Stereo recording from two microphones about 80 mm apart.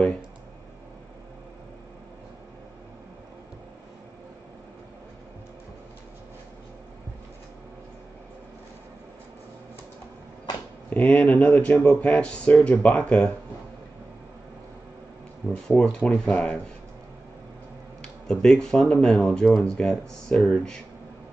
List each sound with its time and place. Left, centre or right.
10.9 s speech: centre
15.5 s speech: centre
18.0 s speech: centre